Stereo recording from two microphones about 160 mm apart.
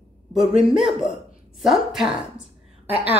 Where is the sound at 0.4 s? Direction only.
5° right (ahead or behind).